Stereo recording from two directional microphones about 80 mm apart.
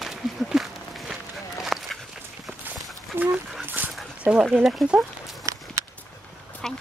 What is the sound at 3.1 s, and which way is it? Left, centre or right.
Dog, right.